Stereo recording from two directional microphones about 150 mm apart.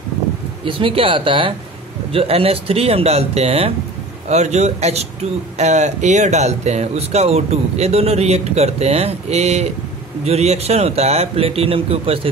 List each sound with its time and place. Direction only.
0.7 s speech: 35° right (ahead or behind)